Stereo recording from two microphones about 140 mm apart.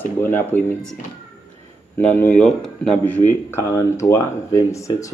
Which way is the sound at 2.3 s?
5° left (ahead or behind).